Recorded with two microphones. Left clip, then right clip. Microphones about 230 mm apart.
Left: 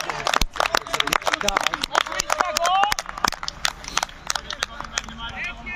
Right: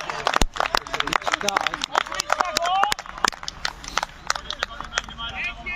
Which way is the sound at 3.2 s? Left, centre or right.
Left.